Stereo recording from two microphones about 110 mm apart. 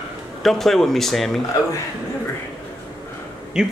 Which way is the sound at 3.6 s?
5° right (ahead or behind).